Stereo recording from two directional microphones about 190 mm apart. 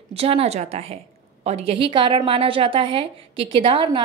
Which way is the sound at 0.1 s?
30° right (ahead or behind).